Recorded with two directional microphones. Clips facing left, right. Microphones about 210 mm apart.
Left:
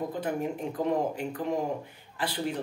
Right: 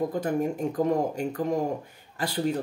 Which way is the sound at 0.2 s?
45° right (ahead or behind).